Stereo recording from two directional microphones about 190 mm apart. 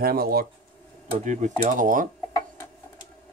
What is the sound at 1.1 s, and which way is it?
Speech, 40° right (ahead or behind).